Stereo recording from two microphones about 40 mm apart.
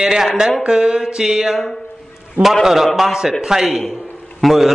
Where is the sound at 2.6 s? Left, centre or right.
Centre.